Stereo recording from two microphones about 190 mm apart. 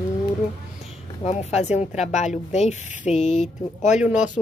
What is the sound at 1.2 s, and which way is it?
Speech, 35° left (ahead or behind).